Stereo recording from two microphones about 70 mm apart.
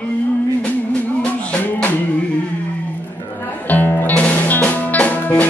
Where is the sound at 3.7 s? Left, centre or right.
Left.